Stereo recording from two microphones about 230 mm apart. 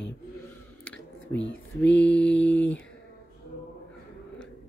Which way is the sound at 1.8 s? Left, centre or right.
Left.